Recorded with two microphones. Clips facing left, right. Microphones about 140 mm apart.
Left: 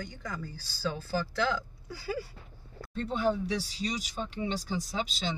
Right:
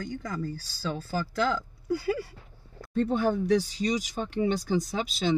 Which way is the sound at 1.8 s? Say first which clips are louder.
Right 11 dB; 55° right (ahead or behind).